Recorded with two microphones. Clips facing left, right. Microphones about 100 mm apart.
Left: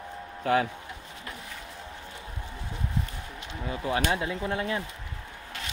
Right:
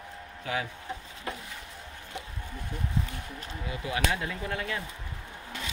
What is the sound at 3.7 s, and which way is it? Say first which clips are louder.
Speech: left 5 dB; 35° left (ahead or behind).